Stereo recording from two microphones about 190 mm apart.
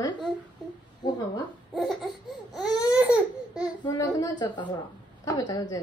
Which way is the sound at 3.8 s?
20° left (ahead or behind).